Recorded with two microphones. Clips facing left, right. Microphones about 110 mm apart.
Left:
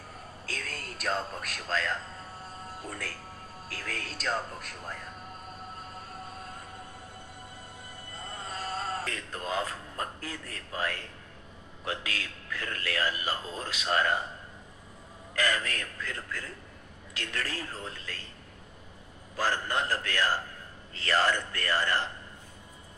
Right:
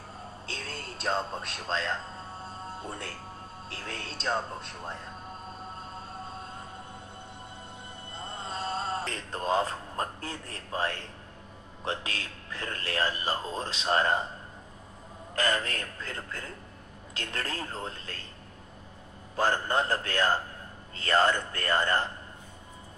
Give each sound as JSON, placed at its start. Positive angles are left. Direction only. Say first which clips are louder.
{"t": 0.5, "sound": "a man's voice", "louder": "left 1 dB", "side_deg": -25}
{"t": 5.8, "sound": "a sound", "louder": "right 2 dB", "side_deg": -25}
{"t": 8.1, "sound": "a man's voice", "louder": "right 2 dB", "side_deg": -25}
{"t": 15.3, "sound": "a man's voice", "louder": "right 1 dB", "side_deg": -30}
{"t": 19.3, "sound": "a man's voice", "louder": "right 3 dB", "side_deg": -25}
{"t": 21.1, "sound": "speech", "louder": "right 2 dB", "side_deg": -20}